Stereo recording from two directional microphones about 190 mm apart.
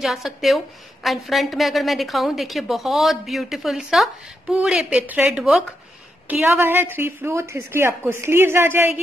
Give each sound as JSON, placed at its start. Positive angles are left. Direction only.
{"t": 0.0, "sound": "a woman's voice", "side_deg": 0}